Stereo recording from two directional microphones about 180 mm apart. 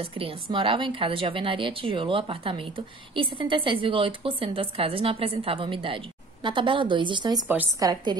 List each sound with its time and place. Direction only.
0.0 s a woman's voice: 30° right (ahead or behind)
7.4 s a woman's voice: 10° right (ahead or behind)
7.9 s a woman's voice: 25° right (ahead or behind)